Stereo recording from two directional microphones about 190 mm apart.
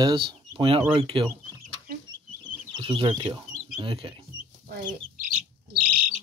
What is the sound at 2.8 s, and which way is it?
Speech, 30° right (ahead or behind).